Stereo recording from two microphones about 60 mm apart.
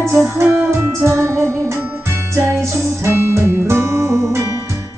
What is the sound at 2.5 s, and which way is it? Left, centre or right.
Music, right.